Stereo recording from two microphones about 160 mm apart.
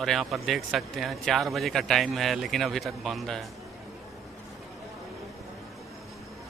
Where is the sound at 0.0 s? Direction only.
Centre (ahead or behind).